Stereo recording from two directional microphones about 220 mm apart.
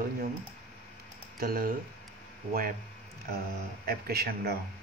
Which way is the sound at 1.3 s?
40° right (ahead or behind).